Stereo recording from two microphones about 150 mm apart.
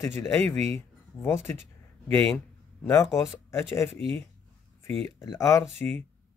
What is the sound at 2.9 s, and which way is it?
Speech, 20° left (ahead or behind).